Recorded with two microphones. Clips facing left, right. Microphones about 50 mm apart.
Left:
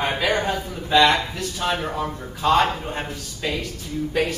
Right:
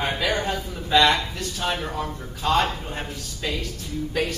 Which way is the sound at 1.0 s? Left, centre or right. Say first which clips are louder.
Left 2 dB; centre.